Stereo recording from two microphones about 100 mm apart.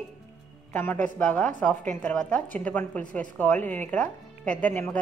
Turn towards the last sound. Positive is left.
turn(degrees=15)  # may be behind; listen again after turning